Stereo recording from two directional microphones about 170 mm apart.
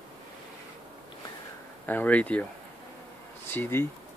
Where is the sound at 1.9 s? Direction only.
10° left (ahead or behind).